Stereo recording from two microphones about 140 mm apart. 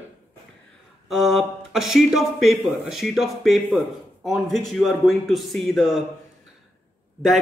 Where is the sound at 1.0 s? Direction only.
Centre (ahead or behind).